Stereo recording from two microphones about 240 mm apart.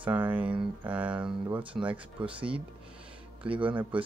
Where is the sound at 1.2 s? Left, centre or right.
Centre.